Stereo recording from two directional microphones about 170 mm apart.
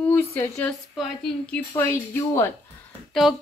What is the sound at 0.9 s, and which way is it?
Speech, centre (ahead or behind).